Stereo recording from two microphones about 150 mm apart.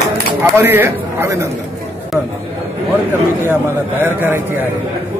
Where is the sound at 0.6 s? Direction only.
15° right (ahead or behind).